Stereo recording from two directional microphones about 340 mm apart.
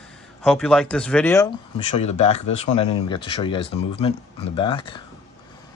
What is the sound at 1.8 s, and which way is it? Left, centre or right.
Speech, centre.